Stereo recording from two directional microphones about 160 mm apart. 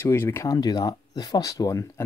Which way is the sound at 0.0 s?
15° left (ahead or behind).